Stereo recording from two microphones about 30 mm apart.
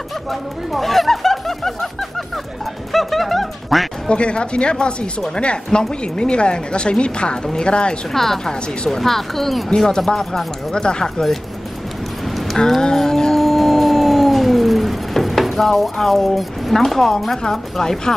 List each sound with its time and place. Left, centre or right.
0.3 s speech: centre
2.9 s music: centre
4.1 s a woman's voice: left
8.1 s speech: centre
8.5 s speech: left
9.0 s music: centre
9.8 s speech: centre
10.7 s speech: left
12.3 s a sound: centre
12.9 s music: centre
13.4 s howl: centre
16.7 s speech: centre